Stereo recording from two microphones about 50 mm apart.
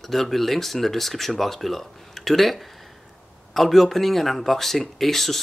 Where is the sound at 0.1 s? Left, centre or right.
Centre.